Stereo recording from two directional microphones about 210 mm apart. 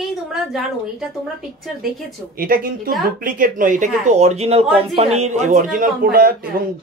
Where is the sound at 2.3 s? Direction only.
45° right (ahead or behind).